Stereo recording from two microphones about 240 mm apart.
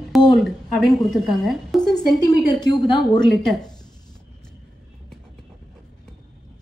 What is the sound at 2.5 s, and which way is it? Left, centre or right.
Speech, centre.